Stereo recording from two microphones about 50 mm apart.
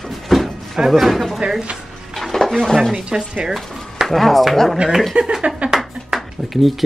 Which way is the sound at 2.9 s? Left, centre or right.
Centre.